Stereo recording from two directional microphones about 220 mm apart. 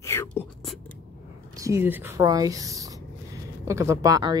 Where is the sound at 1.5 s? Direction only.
15° right (ahead or behind).